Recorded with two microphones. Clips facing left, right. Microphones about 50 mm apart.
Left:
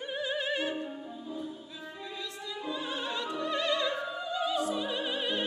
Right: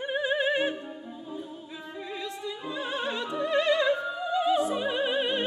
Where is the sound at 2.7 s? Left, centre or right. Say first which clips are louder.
Right 3 dB; right.